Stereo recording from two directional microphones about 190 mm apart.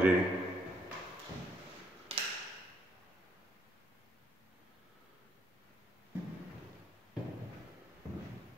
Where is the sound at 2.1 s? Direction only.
30° right (ahead or behind).